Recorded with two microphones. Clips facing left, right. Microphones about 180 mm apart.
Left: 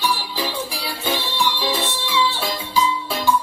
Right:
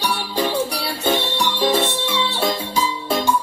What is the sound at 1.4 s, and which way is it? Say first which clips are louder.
Music: right 3 dB; 45° right (ahead or behind).